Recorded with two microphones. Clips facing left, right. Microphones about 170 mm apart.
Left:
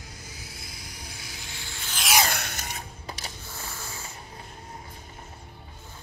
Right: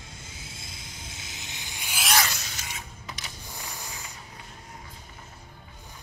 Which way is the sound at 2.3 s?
60° left (ahead or behind).